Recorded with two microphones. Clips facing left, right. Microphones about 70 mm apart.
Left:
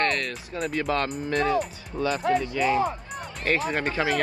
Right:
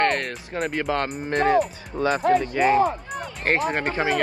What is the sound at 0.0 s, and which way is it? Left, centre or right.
Speech, right.